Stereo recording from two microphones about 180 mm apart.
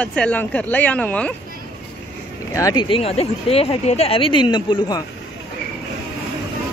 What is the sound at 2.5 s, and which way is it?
Speech, 20° left (ahead or behind).